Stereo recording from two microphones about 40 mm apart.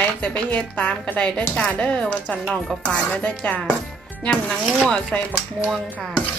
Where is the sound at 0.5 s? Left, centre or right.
Left.